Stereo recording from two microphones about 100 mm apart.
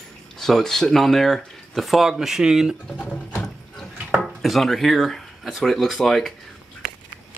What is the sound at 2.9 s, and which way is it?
Sewing machine, 15° left (ahead or behind).